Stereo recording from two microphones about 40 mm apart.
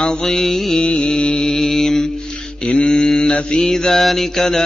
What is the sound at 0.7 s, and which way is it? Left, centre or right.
Mantra, left.